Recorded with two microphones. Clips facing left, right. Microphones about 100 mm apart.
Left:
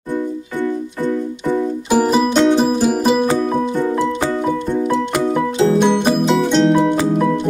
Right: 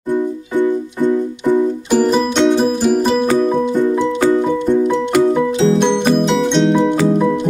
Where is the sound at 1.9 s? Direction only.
10° left (ahead or behind).